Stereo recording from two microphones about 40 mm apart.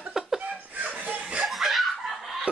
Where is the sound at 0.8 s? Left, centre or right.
Right.